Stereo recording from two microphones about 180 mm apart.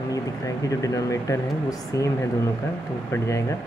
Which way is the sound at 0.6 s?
20° left (ahead or behind).